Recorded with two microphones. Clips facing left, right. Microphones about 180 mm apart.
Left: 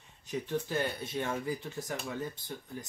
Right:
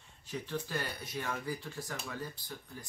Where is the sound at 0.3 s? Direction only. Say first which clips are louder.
Left 4 dB; 20° left (ahead or behind).